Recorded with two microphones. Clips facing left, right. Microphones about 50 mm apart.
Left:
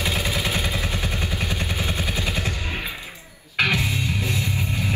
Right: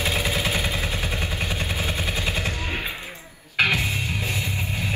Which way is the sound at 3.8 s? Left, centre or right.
Right.